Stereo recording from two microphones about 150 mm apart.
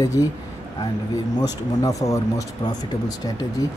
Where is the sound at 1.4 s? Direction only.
25° left (ahead or behind).